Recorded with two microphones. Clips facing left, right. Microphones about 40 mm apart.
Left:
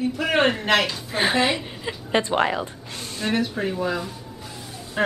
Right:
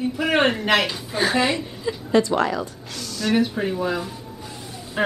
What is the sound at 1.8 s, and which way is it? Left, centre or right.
A woman's voice, left.